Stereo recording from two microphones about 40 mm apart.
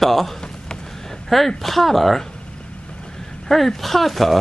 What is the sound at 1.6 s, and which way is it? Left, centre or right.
Speech, centre.